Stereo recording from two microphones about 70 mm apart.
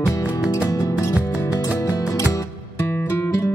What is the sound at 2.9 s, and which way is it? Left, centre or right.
Music, left.